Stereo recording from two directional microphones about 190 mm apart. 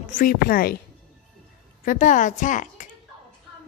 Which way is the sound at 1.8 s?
45° left (ahead or behind).